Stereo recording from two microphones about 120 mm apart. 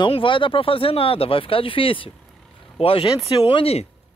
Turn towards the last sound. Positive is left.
turn(degrees=55)  # may be behind; listen again after turning